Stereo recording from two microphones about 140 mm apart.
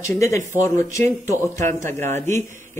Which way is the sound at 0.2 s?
20° left (ahead or behind).